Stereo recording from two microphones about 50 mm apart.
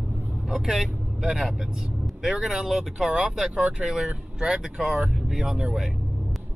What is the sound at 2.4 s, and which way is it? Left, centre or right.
Speech, centre.